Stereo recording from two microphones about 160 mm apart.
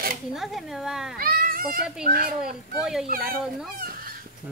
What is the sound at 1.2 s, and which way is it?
Children playing, 65° right (ahead or behind).